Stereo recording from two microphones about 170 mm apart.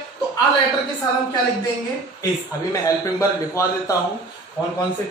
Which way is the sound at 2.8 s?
20° left (ahead or behind).